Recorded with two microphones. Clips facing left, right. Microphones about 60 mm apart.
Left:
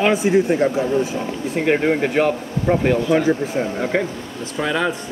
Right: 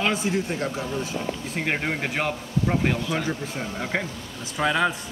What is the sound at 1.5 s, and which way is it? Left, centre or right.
Speech, centre.